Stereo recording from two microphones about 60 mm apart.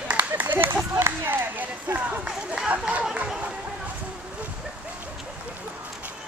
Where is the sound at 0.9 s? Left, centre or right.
Right.